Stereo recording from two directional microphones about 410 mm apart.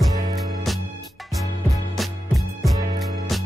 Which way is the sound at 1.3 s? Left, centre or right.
Centre.